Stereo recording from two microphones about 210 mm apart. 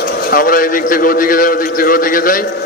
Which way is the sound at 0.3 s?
40° left (ahead or behind).